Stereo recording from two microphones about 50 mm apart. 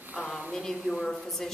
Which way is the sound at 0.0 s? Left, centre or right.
Right.